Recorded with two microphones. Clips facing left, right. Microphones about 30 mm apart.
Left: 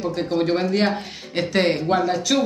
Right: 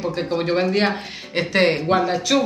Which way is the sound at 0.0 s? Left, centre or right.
Centre.